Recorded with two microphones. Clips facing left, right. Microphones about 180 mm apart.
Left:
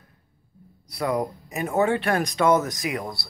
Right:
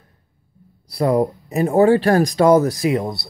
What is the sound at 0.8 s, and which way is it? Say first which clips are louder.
Speech: right 8 dB; 30° right (ahead or behind).